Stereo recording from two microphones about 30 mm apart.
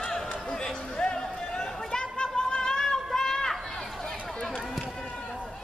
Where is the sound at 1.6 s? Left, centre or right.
Left.